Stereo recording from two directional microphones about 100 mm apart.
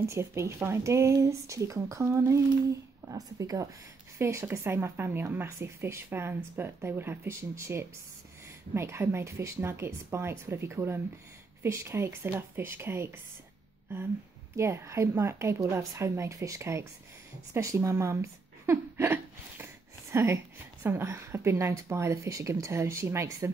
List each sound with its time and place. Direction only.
0.0 s speech: 30° right (ahead or behind)
4.2 s speech: 25° right (ahead or behind)
14.6 s speech: 25° right (ahead or behind)